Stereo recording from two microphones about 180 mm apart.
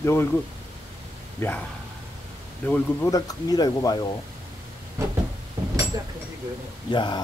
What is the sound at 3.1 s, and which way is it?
Speech, 20° left (ahead or behind).